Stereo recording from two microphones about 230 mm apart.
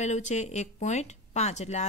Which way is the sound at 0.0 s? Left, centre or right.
Left.